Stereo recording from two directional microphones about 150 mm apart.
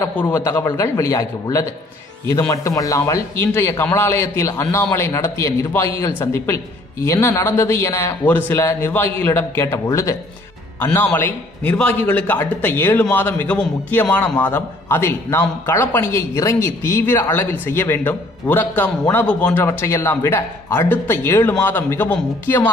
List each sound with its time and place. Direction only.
0.0 s a man's voice: 15° left (ahead or behind)